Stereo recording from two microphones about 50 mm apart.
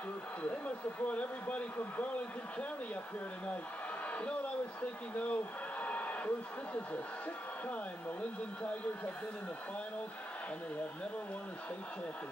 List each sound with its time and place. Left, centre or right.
0.4 s a man's voice: left
4.1 s a sound: left
5.1 s a man's voice: left